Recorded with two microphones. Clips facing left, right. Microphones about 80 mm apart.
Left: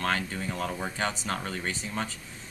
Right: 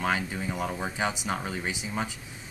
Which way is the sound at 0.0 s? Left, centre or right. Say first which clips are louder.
Right 1 dB; centre.